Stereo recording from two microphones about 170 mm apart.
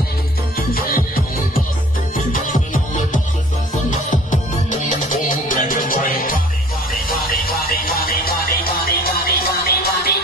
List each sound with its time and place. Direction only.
0.6 s music: 60° left (ahead or behind)
2.4 s music: 50° left (ahead or behind)